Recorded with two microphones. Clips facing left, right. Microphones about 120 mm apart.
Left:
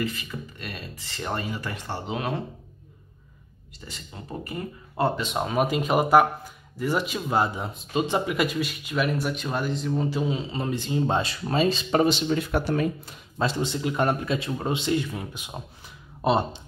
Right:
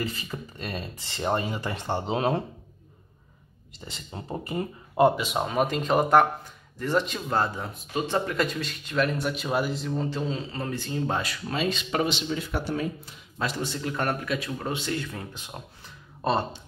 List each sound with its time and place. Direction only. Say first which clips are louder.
0.0 s speech: left 2 dB; 35° right (ahead or behind)
3.8 s speech: right 2 dB; 25° right (ahead or behind)
5.2 s speech: left 1 dB; centre (ahead or behind); by 13.1 s 55° left (ahead or behind)
13.4 s speech: left 4 dB; 25° left (ahead or behind)